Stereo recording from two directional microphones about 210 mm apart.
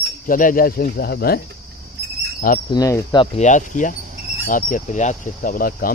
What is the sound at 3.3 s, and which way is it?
Speech, 35° left (ahead or behind).